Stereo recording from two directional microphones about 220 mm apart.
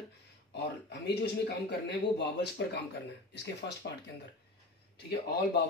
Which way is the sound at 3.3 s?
50° left (ahead or behind).